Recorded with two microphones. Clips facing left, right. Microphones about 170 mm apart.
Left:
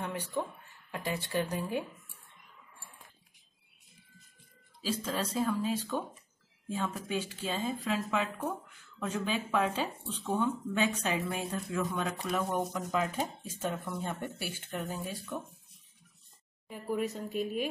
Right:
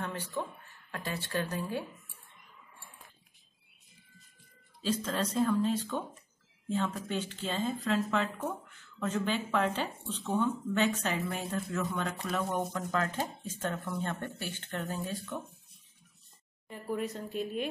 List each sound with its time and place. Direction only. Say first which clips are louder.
0.0 s speech: left 1 dB; 15° left (ahead or behind)
4.8 s speech: right 2 dB; 10° left (ahead or behind)
16.6 s speech: left 2 dB; 5° left (ahead or behind)